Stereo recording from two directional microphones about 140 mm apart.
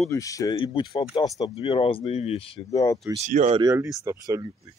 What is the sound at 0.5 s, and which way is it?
Speech, 35° left (ahead or behind).